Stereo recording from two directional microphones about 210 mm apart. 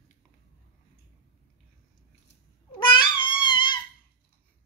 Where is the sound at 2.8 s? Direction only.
20° left (ahead or behind).